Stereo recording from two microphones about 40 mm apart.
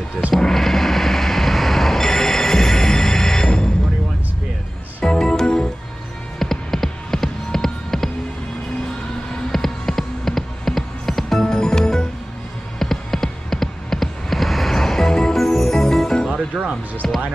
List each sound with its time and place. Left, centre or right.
0.4 s a sound: centre
5.0 s music: centre
9.5 s music: centre
12.7 s a sound: centre
16.5 s music: right
17.0 s music: centre